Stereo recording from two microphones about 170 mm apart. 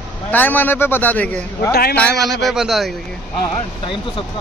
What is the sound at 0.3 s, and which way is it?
Speech, 10° left (ahead or behind).